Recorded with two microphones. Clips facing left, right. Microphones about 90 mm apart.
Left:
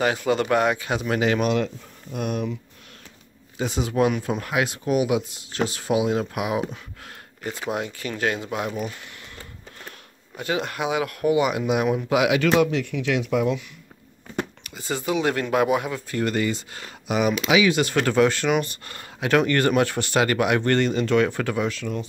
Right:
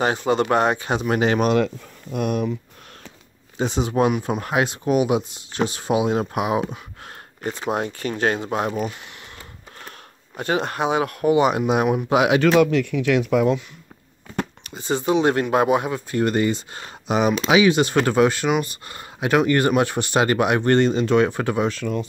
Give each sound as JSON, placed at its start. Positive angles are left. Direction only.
{"t": 0.0, "sound": "speech", "side_deg": -30}
{"t": 2.1, "sound": "speech", "side_deg": -55}
{"t": 3.5, "sound": "speech", "side_deg": -30}
{"t": 10.3, "sound": "speech", "side_deg": -40}
{"t": 12.5, "sound": "speech", "side_deg": -50}
{"t": 14.6, "sound": "speech", "side_deg": -30}
{"t": 21.7, "sound": "speech", "side_deg": -50}